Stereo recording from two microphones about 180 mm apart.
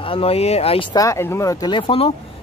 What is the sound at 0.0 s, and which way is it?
Speech, 30° left (ahead or behind).